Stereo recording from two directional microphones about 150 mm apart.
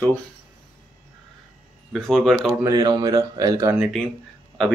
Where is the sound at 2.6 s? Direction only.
25° right (ahead or behind).